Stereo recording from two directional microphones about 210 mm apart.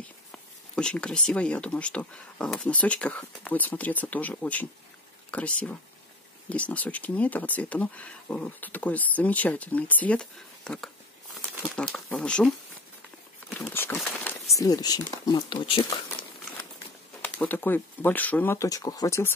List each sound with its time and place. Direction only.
0.7 s speech: 5° left (ahead or behind); by 16.3 s 25° left (ahead or behind)
17.2 s speech: 10° left (ahead or behind)